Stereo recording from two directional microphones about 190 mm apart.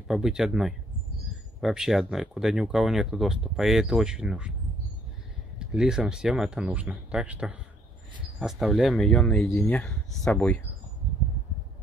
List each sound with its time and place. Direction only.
0.1 s speech: 5° right (ahead or behind)
5.6 s speech: 5° right (ahead or behind)